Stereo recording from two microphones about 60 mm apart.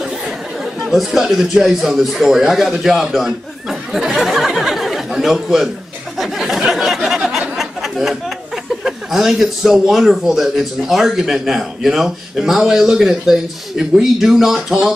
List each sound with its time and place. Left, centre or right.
0.9 s speech: centre
6.1 s chatter: centre
7.2 s a sound: centre
8.8 s a man's voice: centre